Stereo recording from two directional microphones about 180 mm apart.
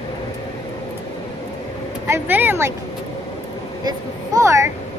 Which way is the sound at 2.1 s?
10° right (ahead or behind).